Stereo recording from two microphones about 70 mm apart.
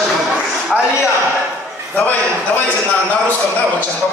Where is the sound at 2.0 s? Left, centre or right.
Left.